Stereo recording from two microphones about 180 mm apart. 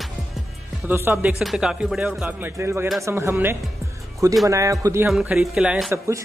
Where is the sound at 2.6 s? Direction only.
15° right (ahead or behind).